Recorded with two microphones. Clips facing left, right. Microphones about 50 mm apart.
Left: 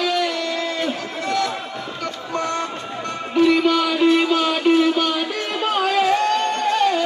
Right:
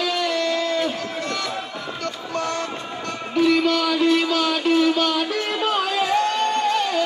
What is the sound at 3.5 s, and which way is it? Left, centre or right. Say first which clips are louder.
Music: left 2 dB; centre.